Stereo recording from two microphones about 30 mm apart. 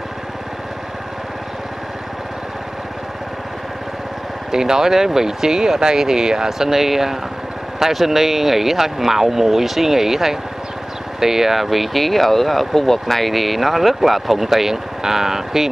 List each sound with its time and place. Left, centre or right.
4.5 s speech: centre